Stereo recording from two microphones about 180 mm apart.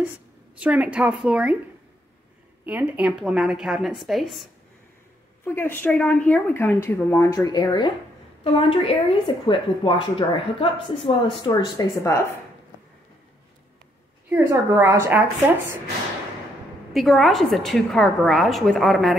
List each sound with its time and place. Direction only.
0.6 s a woman's voice: 5° right (ahead or behind)
2.6 s a woman's voice: 10° right (ahead or behind)
5.4 s a woman's voice: 10° left (ahead or behind)
14.3 s a woman's voice: 15° right (ahead or behind)
16.9 s a woman's voice: centre (ahead or behind)